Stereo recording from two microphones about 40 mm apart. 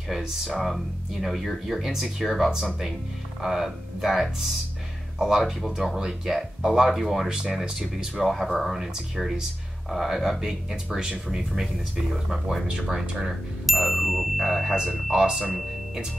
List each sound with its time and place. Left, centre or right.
0.6 s speech: centre
8.2 s speech: centre
12.6 s speech: right
13.7 s speech: centre